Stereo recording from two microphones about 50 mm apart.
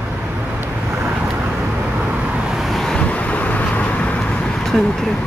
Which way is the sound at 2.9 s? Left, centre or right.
Left.